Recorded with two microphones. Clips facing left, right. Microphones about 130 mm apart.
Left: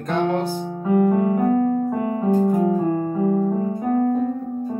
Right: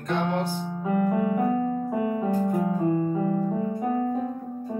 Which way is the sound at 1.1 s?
45° left (ahead or behind).